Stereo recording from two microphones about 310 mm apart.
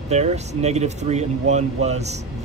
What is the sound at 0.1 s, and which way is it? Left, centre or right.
Speech, right.